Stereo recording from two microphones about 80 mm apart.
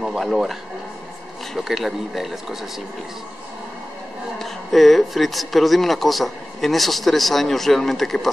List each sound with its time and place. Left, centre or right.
0.0 s speech: centre
4.4 s speech: centre